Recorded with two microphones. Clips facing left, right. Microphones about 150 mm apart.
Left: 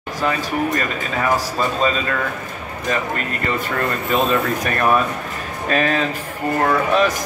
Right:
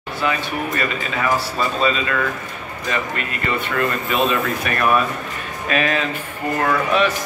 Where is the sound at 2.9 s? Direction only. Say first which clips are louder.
Left 2 dB; 40° left (ahead or behind).